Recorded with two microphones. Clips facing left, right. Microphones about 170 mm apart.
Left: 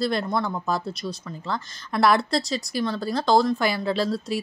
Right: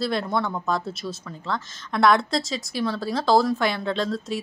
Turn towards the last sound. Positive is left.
turn(degrees=5)  # may be behind; listen again after turning